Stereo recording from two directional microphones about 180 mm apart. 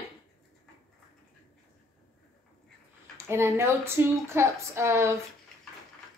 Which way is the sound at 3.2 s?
15° right (ahead or behind).